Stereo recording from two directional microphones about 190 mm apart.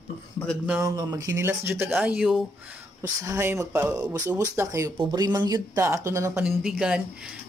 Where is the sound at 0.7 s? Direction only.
15° right (ahead or behind).